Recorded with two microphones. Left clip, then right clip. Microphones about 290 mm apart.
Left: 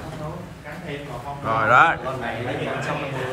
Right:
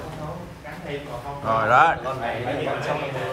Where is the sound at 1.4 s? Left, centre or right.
Centre.